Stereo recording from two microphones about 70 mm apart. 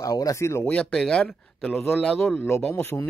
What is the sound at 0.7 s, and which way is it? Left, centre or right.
Speech, centre.